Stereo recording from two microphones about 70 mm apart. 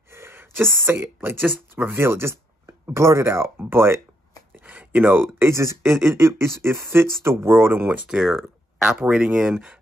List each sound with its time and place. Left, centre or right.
0.1 s speech: right
4.6 s speech: right
5.5 s speech: right
8.1 s speech: centre
8.8 s speech: right